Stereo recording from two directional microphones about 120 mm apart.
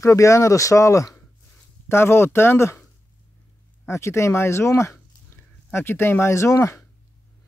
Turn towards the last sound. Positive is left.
turn(degrees=25)  # may be behind; listen again after turning